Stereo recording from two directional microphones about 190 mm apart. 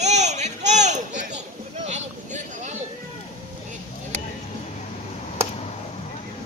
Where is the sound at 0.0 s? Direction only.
35° right (ahead or behind).